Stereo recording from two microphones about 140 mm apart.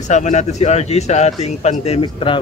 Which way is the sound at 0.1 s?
55° left (ahead or behind).